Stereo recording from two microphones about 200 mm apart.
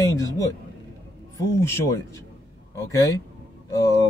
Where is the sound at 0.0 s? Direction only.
15° left (ahead or behind).